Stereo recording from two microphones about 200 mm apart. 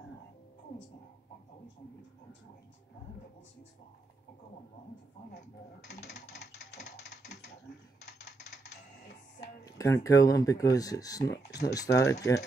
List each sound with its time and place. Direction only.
6.0 s mechanisms: 55° left (ahead or behind)
9.7 s speech: 15° left (ahead or behind)
11.2 s speech: 55° left (ahead or behind)
11.7 s speech: 15° left (ahead or behind)